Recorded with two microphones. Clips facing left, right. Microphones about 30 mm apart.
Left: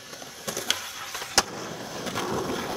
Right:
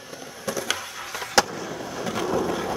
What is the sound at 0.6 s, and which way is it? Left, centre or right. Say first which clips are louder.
Skateboard: right 1 dB; centre.